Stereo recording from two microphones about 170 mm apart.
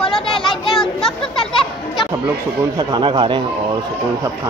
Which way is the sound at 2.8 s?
25° right (ahead or behind).